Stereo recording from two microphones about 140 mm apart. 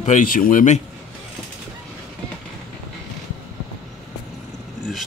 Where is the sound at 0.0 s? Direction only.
65° left (ahead or behind).